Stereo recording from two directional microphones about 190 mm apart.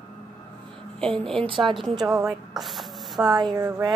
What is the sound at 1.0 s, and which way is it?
Speech, 5° left (ahead or behind).